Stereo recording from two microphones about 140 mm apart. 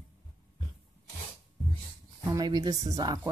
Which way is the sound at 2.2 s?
30° right (ahead or behind).